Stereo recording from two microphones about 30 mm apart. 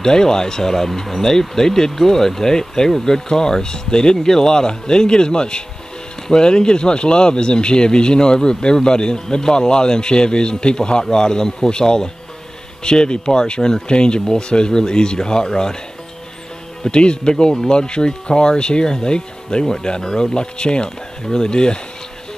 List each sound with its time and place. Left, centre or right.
0.0 s speech: left
16.8 s speech: left
18.9 s speech: centre